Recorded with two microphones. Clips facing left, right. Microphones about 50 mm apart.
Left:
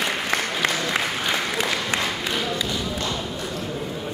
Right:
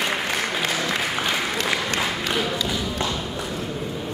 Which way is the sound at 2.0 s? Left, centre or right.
Centre.